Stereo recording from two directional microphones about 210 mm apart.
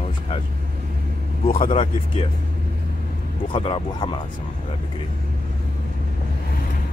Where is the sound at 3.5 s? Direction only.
25° left (ahead or behind).